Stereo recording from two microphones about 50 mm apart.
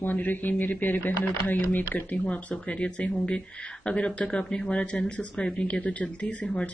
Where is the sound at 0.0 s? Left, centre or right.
Left.